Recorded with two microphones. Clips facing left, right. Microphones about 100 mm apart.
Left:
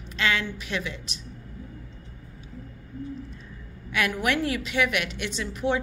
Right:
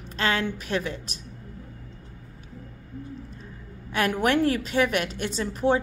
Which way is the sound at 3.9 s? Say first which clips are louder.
Right 3 dB; 40° right (ahead or behind).